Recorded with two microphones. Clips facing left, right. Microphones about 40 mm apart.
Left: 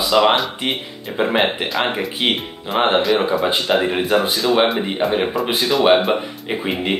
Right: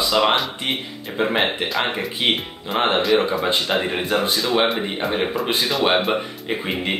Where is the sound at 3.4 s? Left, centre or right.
Centre.